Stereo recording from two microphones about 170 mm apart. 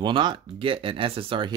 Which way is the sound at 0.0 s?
25° right (ahead or behind).